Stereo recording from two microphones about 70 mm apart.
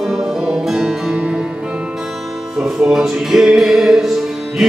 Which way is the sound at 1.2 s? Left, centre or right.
Centre.